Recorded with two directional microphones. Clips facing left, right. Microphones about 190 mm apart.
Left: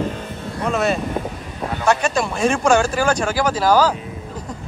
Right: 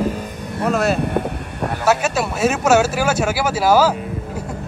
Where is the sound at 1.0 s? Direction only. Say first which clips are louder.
Right 4 dB; 65° right (ahead or behind).